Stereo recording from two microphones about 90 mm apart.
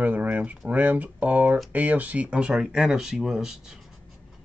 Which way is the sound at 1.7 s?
15° right (ahead or behind).